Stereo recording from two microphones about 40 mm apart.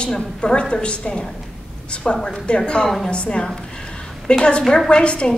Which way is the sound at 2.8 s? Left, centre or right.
Centre.